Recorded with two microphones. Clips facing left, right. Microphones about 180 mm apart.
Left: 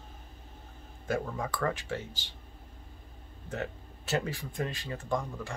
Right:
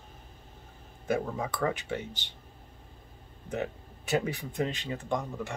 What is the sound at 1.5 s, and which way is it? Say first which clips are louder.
Speech: right 1 dB; 15° right (ahead or behind).